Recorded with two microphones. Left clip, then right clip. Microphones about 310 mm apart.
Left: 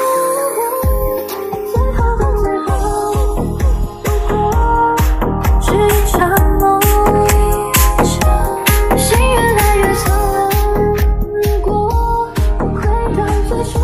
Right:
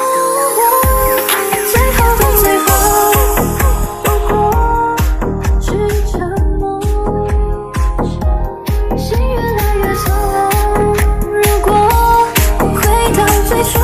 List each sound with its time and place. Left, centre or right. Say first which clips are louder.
1.8 s music: right 6 dB; right
4.3 s music: right 1 dB; centre
6.1 s music: left 6 dB; left
6.8 s music: left 6 dB; left
8.6 s music: left 5 dB; left; by 10.8 s centre
11.6 s music: right 6 dB; right